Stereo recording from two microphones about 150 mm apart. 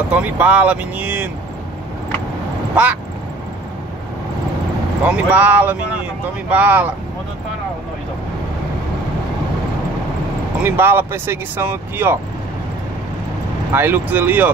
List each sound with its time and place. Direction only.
0.1 s speech: 10° right (ahead or behind)
2.7 s vehicle: 10° right (ahead or behind)
5.0 s speech: 10° right (ahead or behind)
10.6 s speech: 15° right (ahead or behind)
13.7 s speech: 15° right (ahead or behind)